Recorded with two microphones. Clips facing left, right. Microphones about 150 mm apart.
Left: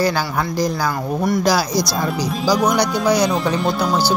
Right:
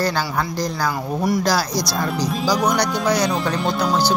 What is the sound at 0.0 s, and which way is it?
Speech, 10° left (ahead or behind).